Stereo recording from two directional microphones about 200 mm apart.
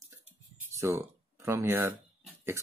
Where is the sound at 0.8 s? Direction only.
15° right (ahead or behind).